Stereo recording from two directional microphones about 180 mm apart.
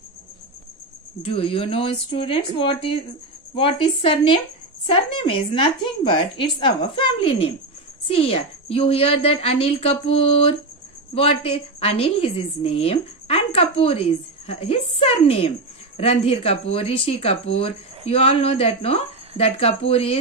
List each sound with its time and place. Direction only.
1.2 s a woman's voice: 30° left (ahead or behind)